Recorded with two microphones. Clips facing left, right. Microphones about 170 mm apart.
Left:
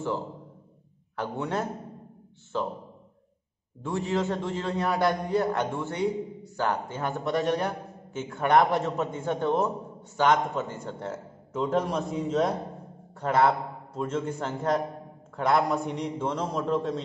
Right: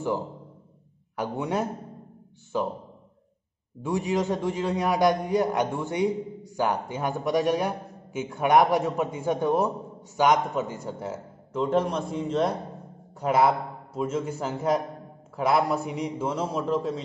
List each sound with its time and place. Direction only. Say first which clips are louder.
1.1 s a man's voice: right 2 dB; 10° right (ahead or behind)
3.8 s a man's voice: right 2 dB; 15° right (ahead or behind)
13.2 s a man's voice: right 1 dB; 10° right (ahead or behind)